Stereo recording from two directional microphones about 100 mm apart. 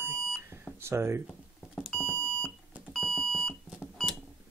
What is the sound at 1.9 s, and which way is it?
Smoke detector, 10° left (ahead or behind).